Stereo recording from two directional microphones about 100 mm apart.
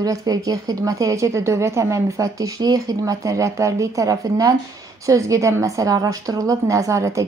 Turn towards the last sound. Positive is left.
turn(degrees=-30)  # may be behind; listen again after turning